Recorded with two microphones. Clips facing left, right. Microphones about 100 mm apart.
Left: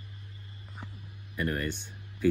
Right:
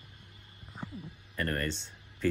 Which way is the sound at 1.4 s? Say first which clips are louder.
Left 1 dB; 10° left (ahead or behind).